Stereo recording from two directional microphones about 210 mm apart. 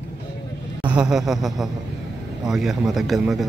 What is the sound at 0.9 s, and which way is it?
Speech, 5° right (ahead or behind).